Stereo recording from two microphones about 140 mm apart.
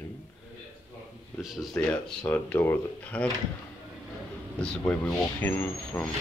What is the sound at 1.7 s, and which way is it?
Speech, 10° left (ahead or behind).